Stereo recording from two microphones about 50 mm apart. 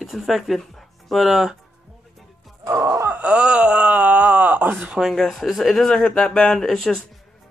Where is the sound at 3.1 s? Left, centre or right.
Right.